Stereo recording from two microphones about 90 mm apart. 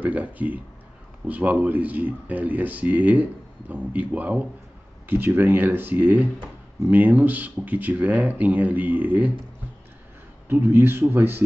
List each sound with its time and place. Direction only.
0.0 s speech: 15° right (ahead or behind)
10.5 s speech: 25° right (ahead or behind)